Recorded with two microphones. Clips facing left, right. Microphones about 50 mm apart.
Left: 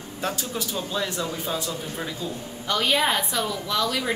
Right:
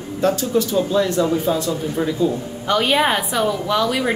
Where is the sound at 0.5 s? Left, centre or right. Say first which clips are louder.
Right 11 dB; centre.